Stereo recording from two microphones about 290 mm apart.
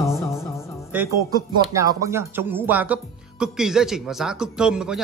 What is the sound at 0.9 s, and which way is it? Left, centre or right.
Speech, centre.